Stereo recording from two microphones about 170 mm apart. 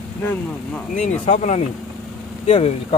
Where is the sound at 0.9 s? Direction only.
40° left (ahead or behind).